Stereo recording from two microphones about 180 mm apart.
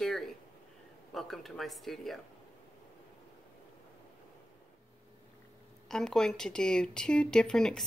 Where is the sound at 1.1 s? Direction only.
Centre (ahead or behind).